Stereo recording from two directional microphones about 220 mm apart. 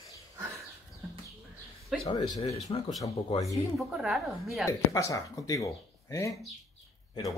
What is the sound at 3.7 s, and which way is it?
Speech, 5° right (ahead or behind).